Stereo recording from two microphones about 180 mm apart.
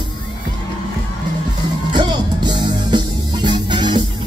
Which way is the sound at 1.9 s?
25° right (ahead or behind).